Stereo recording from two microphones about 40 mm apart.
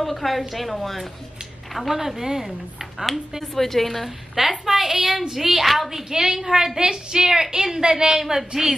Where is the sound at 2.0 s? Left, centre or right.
Centre.